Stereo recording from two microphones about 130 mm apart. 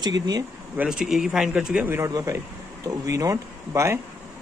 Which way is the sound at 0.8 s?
5° right (ahead or behind).